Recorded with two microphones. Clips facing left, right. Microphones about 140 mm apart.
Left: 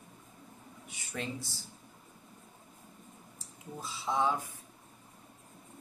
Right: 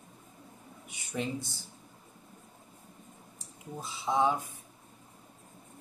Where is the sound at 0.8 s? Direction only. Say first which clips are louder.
Right 4 dB; 20° right (ahead or behind).